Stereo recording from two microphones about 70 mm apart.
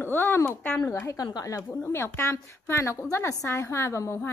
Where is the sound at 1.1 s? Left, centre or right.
Left.